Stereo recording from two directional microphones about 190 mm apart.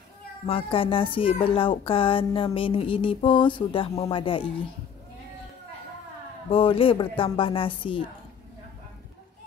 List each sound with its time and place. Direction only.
0.5 s speech: 30° left (ahead or behind)
6.5 s speech: 30° left (ahead or behind)